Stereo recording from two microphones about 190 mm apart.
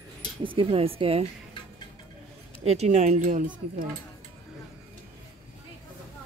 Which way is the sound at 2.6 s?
35° right (ahead or behind).